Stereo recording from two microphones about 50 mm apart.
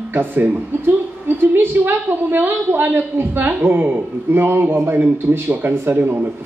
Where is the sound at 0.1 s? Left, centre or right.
Right.